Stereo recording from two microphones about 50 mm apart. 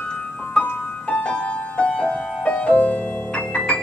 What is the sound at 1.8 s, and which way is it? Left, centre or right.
Music, left.